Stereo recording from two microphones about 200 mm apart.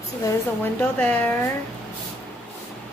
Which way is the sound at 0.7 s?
5° left (ahead or behind).